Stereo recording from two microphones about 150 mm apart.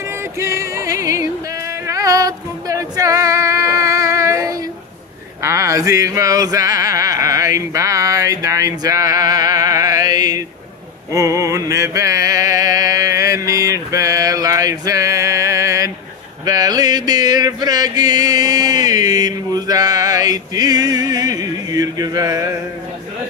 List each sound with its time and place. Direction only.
0.4 s music: 20° right (ahead or behind)
1.9 s female singing: 20° right (ahead or behind)
5.4 s a sound: 20° right (ahead or behind)
11.1 s music: 20° right (ahead or behind)